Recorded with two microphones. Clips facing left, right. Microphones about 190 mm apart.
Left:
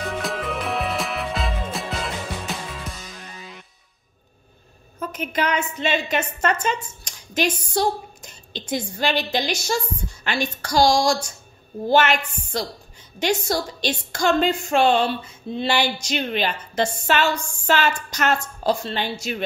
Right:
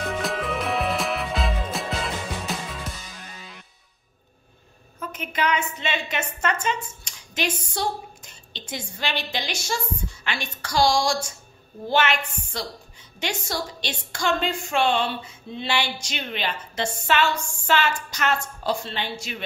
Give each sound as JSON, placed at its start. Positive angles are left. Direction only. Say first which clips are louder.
{"t": 0.0, "sound": "music", "louder": "even", "side_deg": 0}
{"t": 5.1, "sound": "a woman's voice", "louder": "left 1 dB", "side_deg": 40}